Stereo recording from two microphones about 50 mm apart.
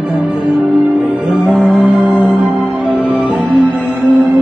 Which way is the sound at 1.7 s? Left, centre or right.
Right.